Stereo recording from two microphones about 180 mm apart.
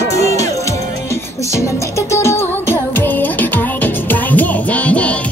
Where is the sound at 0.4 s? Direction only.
20° left (ahead or behind).